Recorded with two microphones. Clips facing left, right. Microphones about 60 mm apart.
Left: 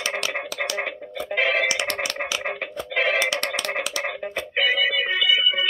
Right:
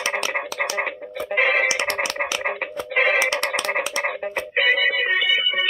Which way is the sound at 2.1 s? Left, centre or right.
Right.